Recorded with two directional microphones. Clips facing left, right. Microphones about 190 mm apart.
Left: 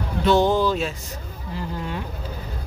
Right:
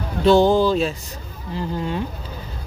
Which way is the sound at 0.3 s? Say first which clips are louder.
Right 4 dB; 30° right (ahead or behind).